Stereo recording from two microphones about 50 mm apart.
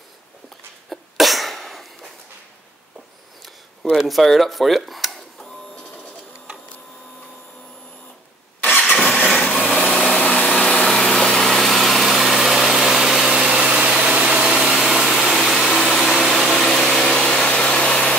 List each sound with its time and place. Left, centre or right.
0.8 s sneeze: centre
4.1 s speech: centre
8.6 s vehicle: left
8.9 s vehicle: centre
9.3 s a sound: centre
9.7 s a sound: left
10.0 s vacuum cleaner: centre
10.9 s engine: centre
13.5 s vehicle: right
14.4 s engine: centre
15.0 s vehicle: centre